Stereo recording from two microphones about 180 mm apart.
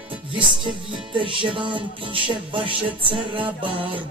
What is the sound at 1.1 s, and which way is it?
Music, 30° right (ahead or behind).